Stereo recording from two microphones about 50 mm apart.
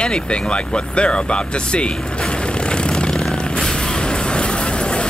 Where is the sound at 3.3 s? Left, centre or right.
Centre.